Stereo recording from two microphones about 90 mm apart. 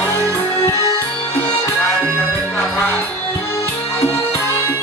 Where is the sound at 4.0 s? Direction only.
30° left (ahead or behind).